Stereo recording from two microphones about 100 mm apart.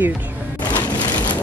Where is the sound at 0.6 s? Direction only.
45° left (ahead or behind).